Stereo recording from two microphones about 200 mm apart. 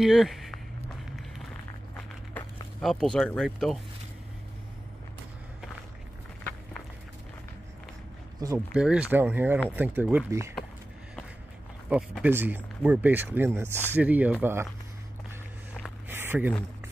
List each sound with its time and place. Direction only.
0.0 s speech: centre (ahead or behind)
2.3 s speech: centre (ahead or behind)
8.4 s speech: 15° right (ahead or behind)
8.7 s speech: 5° right (ahead or behind)
11.9 s speech: 10° right (ahead or behind)
16.1 s a sound: 10° right (ahead or behind)